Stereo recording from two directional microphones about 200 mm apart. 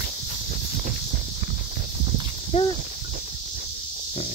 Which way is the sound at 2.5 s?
35° left (ahead or behind).